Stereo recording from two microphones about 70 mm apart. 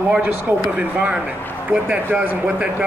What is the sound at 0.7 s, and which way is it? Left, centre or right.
Speech, centre.